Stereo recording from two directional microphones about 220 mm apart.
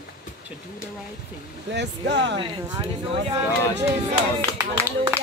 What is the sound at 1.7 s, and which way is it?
Speech, 50° right (ahead or behind).